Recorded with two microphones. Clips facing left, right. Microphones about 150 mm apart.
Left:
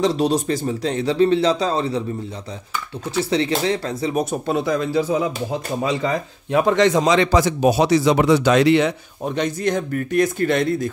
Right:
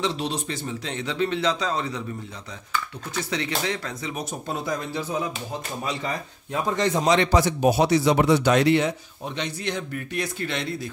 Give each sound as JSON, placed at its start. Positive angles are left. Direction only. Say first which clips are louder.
{"t": 0.0, "sound": "a man's voice", "louder": "left 9 dB", "side_deg": 40}
{"t": 3.2, "sound": "a man's voice", "louder": "left 8 dB", "side_deg": 30}
{"t": 4.2, "sound": "speech", "louder": "left 9 dB", "side_deg": 70}
{"t": 6.5, "sound": "a man's voice", "louder": "left 8 dB", "side_deg": 80}
{"t": 9.2, "sound": "speech", "louder": "left 9 dB", "side_deg": 45}